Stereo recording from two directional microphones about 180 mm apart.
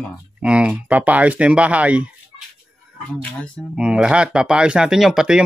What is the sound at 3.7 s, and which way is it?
Speech, 5° right (ahead or behind).